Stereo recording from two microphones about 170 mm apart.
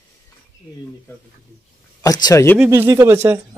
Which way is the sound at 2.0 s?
20° left (ahead or behind).